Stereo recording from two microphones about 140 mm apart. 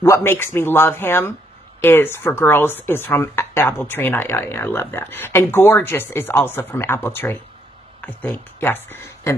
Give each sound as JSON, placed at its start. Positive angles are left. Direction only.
{"t": 0.0, "sound": "speech", "side_deg": 20}